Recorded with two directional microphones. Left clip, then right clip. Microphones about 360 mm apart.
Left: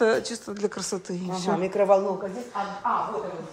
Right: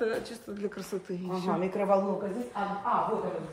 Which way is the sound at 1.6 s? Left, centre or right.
Left.